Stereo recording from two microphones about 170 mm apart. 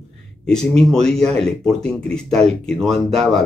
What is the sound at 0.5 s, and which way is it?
Speech, 5° left (ahead or behind).